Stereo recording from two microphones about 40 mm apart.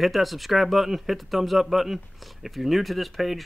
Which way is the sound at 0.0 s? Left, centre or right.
Centre.